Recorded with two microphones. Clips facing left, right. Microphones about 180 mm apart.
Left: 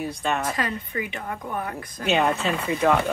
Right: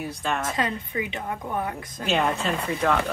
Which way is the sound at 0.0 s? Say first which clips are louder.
Left 2 dB; centre (ahead or behind).